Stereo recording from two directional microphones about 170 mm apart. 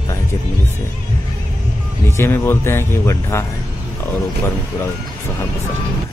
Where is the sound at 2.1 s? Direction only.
15° left (ahead or behind).